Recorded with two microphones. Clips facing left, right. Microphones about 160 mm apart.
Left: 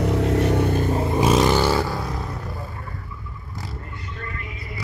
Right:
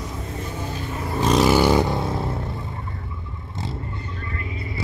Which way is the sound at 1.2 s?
5° left (ahead or behind).